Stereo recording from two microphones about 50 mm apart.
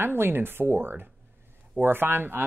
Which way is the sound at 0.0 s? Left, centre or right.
Right.